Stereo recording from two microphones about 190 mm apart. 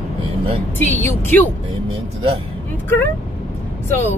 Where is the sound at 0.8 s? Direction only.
10° left (ahead or behind).